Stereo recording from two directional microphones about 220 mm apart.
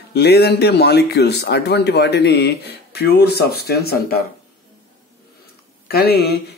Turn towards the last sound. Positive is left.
turn(degrees=45)  # may be behind; listen again after turning